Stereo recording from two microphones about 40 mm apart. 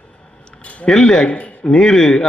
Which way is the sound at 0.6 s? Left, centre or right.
Left.